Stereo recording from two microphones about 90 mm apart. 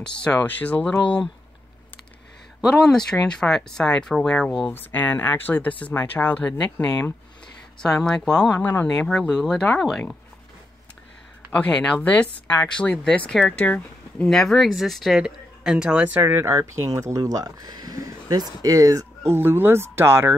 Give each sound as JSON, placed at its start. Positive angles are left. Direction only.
{"t": 0.2, "sound": "speech", "side_deg": 15}
{"t": 2.8, "sound": "speech", "side_deg": 5}
{"t": 4.7, "sound": "speech", "side_deg": 20}
{"t": 7.8, "sound": "speech", "side_deg": 10}
{"t": 11.5, "sound": "speech", "side_deg": 15}
{"t": 14.3, "sound": "speech", "side_deg": 5}
{"t": 16.2, "sound": "speech", "side_deg": -25}